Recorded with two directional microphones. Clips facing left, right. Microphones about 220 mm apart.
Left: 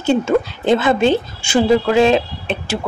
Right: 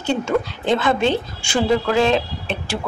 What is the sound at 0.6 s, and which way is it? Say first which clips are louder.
Speech: left 4 dB; 5° left (ahead or behind).